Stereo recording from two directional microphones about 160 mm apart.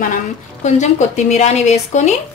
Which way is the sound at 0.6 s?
50° left (ahead or behind).